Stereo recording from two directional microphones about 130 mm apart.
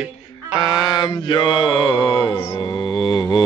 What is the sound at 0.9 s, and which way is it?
Speech, 35° left (ahead or behind).